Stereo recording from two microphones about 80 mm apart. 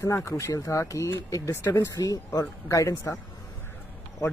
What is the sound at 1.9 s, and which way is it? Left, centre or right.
Speech, left.